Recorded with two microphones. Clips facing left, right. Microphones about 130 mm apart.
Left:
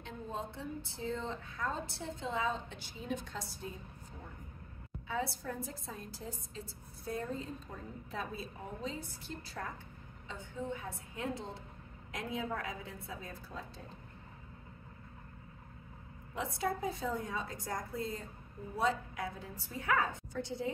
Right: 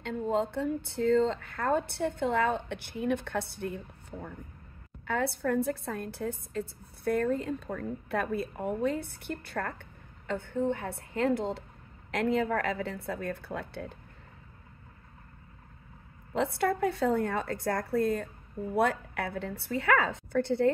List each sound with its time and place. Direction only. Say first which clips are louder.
0.0 s a woman's voice: right 12 dB; 70° right (ahead or behind)
16.3 s a woman's voice: right 8 dB; 65° right (ahead or behind)